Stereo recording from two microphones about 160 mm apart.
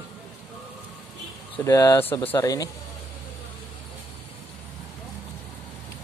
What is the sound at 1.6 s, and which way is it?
Speech, 25° left (ahead or behind).